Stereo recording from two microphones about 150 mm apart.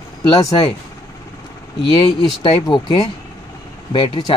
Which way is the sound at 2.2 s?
30° left (ahead or behind).